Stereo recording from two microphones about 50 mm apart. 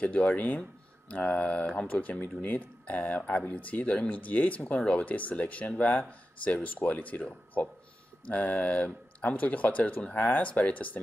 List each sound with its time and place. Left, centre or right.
0.0 s speech: left
8.3 s speech: left